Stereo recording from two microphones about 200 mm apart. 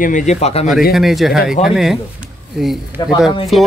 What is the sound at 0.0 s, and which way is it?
Speech, 40° left (ahead or behind).